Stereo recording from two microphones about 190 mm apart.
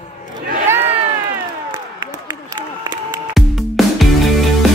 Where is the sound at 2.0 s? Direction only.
20° right (ahead or behind).